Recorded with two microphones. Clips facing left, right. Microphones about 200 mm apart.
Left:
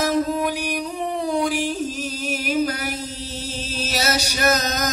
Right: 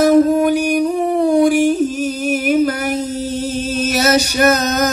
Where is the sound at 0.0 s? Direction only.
50° right (ahead or behind).